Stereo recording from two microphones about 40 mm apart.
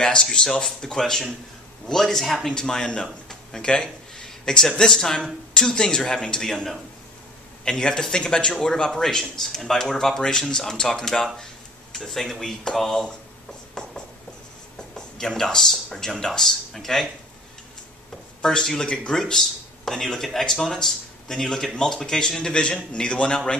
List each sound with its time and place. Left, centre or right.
0.0 s speech: centre
13.8 s writing: centre
14.8 s speech: centre
18.4 s a man's voice: centre
19.1 s a man's voice: centre